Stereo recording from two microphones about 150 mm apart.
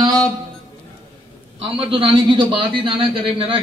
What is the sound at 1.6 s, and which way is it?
A man's voice, 40° right (ahead or behind).